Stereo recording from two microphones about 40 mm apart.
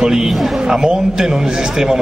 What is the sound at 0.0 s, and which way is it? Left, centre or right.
A man's voice, centre.